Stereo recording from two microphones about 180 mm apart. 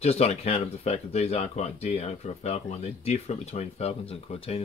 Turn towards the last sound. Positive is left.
turn(degrees=35)  # may be behind; listen again after turning